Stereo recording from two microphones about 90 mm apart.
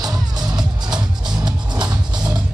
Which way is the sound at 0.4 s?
45° right (ahead or behind).